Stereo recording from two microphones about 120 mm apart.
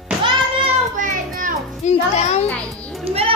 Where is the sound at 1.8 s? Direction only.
70° left (ahead or behind).